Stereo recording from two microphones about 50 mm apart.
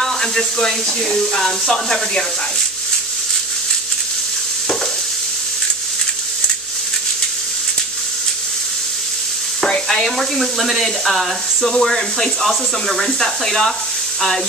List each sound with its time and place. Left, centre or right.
0.0 s speech: centre
9.8 s speech: centre